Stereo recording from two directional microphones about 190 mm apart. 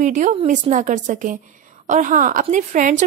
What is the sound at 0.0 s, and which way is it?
A woman's voice, 40° right (ahead or behind).